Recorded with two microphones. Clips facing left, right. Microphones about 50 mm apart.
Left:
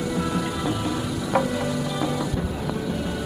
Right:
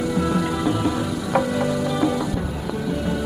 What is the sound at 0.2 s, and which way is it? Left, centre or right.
Music, right.